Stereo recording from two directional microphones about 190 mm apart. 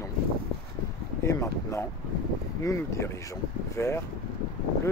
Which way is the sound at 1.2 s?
15° left (ahead or behind).